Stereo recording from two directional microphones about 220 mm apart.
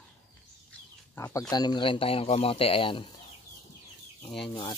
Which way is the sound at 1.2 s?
15° left (ahead or behind).